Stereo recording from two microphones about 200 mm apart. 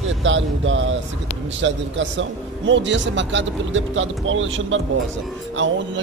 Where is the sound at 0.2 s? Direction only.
70° right (ahead or behind).